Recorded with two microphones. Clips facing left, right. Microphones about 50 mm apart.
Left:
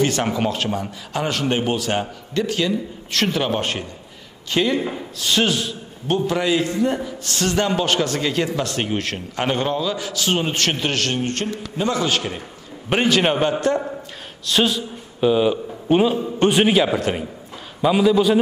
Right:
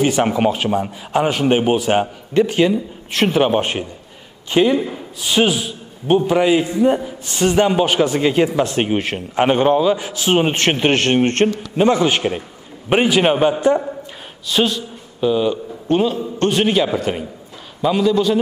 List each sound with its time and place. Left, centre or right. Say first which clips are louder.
0.0 s a man's voice: right 4 dB; centre; by 11.5 s right
11.7 s a man's voice: right 4 dB; right
12.9 s a man's voice: right 3 dB; centre
14.5 s a man's voice: right 1 dB; centre
15.1 s a man's voice: even; centre